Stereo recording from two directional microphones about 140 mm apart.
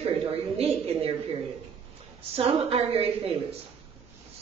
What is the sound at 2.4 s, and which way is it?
A woman's voice, 45° right (ahead or behind).